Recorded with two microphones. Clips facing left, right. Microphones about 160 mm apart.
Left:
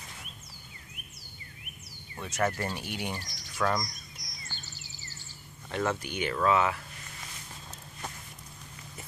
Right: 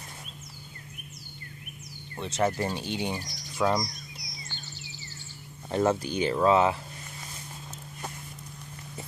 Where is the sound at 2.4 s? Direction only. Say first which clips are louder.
Right 3 dB; 15° right (ahead or behind).